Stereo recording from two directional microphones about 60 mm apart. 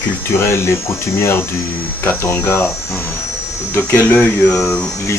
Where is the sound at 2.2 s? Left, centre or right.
Left.